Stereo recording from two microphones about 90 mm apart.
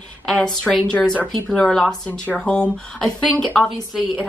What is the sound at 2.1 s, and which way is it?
A woman's voice, 15° left (ahead or behind).